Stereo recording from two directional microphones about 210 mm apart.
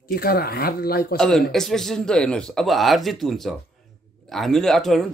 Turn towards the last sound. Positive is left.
turn(degrees=0)  # may be behind; listen again after turning